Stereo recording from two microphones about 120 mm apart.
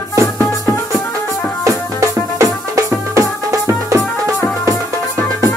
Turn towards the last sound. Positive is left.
turn(degrees=-25)  # may be behind; listen again after turning